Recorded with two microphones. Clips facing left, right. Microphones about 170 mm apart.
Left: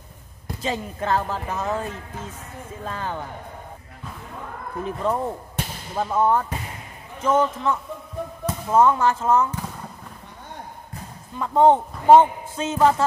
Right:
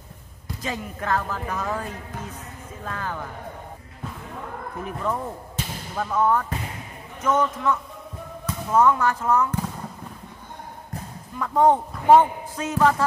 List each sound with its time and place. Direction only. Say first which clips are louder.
0.6 s a man's voice: left 4 dB; 25° left (ahead or behind)
4.8 s a man's voice: left 4 dB; 30° left (ahead or behind)
11.3 s a man's voice: left 2 dB; 25° left (ahead or behind)